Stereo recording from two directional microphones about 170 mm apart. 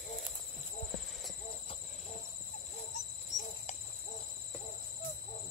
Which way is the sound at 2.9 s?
45° left (ahead or behind).